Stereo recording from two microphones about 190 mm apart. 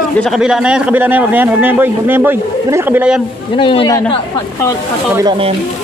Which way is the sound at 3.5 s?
25° left (ahead or behind).